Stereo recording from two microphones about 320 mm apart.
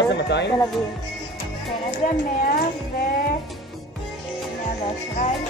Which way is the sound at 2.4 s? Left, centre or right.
Left.